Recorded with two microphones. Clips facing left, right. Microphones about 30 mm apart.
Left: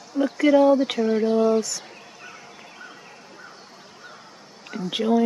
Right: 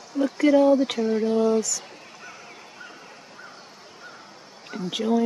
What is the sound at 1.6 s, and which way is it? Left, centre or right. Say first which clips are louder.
Speech: even; left.